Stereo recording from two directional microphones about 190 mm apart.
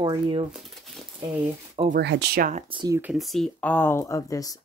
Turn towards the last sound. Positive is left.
turn(degrees=20)  # may be behind; listen again after turning